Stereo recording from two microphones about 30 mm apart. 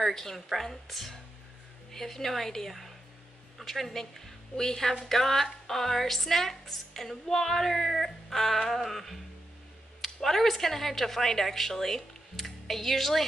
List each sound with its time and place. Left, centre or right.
0.1 s a woman's voice: centre
10.2 s a woman's voice: centre